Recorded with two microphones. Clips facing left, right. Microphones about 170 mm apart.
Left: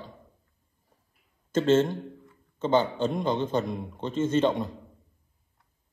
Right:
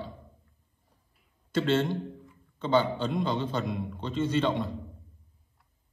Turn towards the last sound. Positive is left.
turn(degrees=45)  # may be behind; listen again after turning